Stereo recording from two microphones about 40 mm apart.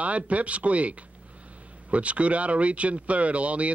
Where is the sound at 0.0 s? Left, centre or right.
Right.